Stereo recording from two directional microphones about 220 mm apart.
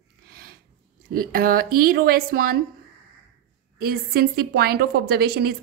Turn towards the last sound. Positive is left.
turn(degrees=-45)  # may be behind; listen again after turning